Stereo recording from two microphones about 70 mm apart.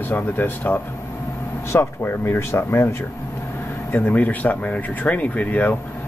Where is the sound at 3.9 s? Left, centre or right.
Left.